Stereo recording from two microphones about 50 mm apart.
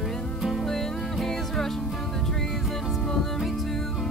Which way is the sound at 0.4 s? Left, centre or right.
Centre.